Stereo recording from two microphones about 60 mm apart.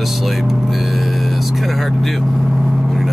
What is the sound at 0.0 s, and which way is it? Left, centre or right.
Vehicle, centre.